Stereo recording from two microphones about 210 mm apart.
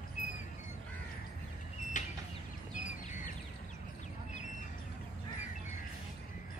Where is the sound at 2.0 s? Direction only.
35° left (ahead or behind).